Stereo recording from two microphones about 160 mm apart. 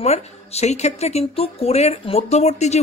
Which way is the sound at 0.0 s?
40° left (ahead or behind).